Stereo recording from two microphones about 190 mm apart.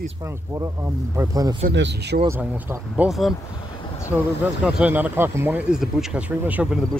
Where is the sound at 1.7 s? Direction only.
70° right (ahead or behind).